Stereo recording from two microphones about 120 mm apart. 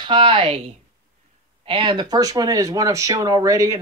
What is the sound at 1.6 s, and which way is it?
Speech, 45° right (ahead or behind).